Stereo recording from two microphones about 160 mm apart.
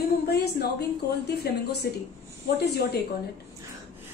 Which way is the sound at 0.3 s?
90° left.